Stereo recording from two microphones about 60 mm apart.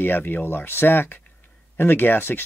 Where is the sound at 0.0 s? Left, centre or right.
Left.